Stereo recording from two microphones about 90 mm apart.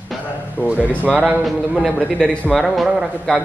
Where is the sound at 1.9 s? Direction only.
10° left (ahead or behind).